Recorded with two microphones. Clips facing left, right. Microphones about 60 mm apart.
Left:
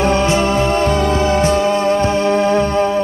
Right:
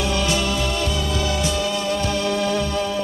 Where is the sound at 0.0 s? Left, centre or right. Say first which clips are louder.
Left 8 dB; left.